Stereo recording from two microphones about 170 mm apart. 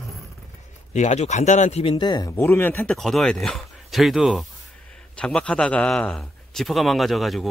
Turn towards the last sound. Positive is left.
turn(degrees=0)  # may be behind; listen again after turning